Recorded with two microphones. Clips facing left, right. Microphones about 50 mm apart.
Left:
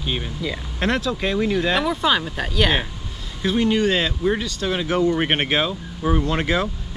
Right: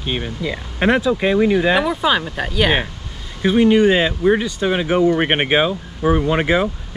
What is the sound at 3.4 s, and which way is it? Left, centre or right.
Speech, centre.